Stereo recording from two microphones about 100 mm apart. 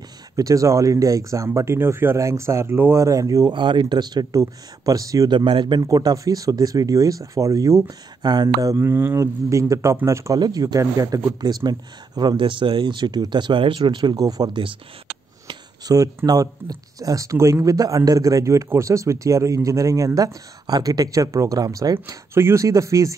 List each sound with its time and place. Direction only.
0.4 s speech: 35° right (ahead or behind)
3.5 s speech: 50° right (ahead or behind); by 5.3 s 35° right (ahead or behind)
5.3 s speech: 55° right (ahead or behind); by 7.8 s 30° right (ahead or behind)
8.2 s speech: 45° right (ahead or behind)
10.4 s speech: 40° right (ahead or behind)
15.4 s a sound: 35° right (ahead or behind)
16.3 s speech: 40° right (ahead or behind)
22.0 s speech: 25° right (ahead or behind)